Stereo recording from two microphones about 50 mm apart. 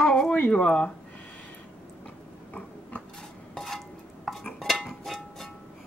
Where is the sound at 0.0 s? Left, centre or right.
Centre.